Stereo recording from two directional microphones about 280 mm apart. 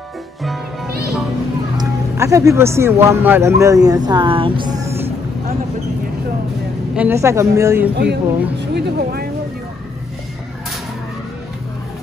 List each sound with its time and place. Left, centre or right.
1.8 s speech: centre
7.0 s speech: centre
7.9 s speech: right